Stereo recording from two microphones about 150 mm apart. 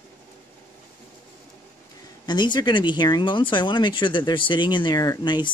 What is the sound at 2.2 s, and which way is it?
Speech, 30° left (ahead or behind).